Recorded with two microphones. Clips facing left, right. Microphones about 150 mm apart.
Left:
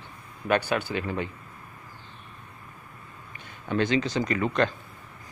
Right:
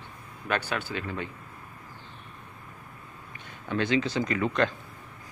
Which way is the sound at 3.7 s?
5° right (ahead or behind).